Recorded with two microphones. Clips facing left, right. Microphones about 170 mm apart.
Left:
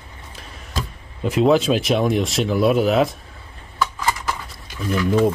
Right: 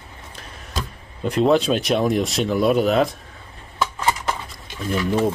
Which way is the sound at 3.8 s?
25° right (ahead or behind).